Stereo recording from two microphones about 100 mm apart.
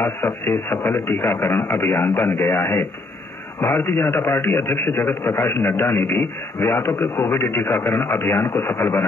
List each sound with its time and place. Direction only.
0.0 s a man's voice: 20° left (ahead or behind)